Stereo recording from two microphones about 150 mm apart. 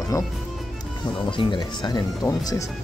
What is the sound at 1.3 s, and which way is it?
Speech, 35° left (ahead or behind).